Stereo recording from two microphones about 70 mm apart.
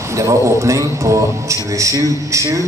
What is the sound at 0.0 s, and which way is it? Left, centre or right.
A man's voice, right.